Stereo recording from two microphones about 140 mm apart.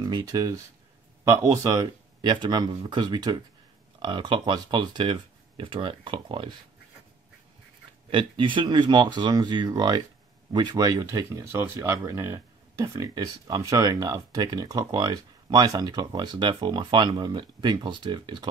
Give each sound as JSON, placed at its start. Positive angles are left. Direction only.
{"t": 0.0, "sound": "speech", "side_deg": -25}
{"t": 8.1, "sound": "speech", "side_deg": -35}